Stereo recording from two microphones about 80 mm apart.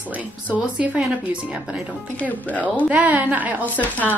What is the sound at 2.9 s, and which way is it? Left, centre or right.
Speech, centre.